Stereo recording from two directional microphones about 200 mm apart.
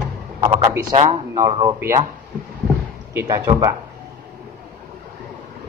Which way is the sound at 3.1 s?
20° right (ahead or behind).